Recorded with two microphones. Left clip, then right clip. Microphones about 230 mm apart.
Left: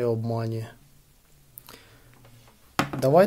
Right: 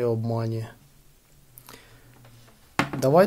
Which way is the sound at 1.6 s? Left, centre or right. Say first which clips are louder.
Right 1 dB; centre.